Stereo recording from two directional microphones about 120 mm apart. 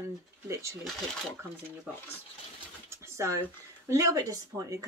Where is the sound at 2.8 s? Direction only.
25° right (ahead or behind).